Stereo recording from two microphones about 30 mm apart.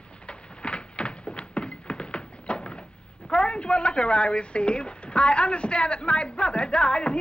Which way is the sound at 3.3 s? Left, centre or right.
Left.